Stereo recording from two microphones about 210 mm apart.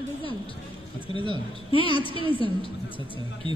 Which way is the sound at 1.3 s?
25° left (ahead or behind).